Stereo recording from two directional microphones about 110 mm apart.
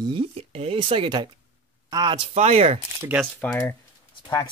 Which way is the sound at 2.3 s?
70° right (ahead or behind).